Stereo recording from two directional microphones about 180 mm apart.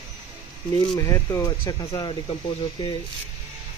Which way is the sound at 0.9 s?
15° left (ahead or behind).